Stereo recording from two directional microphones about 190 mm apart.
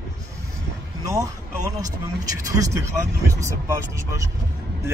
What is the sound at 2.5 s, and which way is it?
Speech, 15° right (ahead or behind).